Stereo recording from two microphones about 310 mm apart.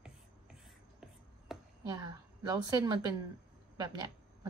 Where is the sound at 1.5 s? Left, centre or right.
Centre.